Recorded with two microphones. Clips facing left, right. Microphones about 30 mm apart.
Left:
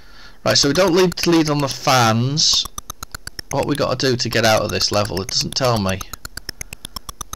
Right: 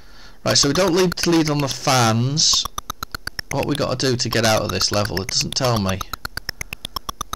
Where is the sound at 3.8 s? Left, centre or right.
Centre.